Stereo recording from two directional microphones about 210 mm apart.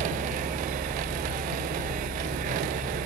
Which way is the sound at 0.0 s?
40° right (ahead or behind).